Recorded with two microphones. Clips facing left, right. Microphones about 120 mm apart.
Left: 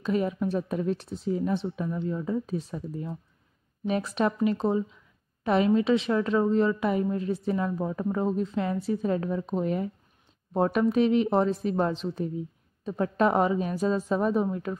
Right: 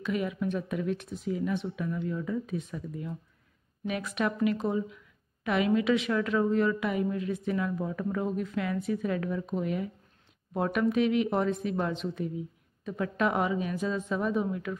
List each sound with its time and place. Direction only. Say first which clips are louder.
0.0 s a woman's voice: left 4 dB; 35° left (ahead or behind)